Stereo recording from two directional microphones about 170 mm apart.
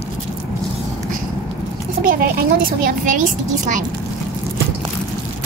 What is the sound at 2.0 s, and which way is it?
A child's voice, 55° right (ahead or behind).